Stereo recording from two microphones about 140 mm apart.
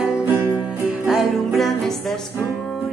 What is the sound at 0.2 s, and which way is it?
Music, 15° right (ahead or behind).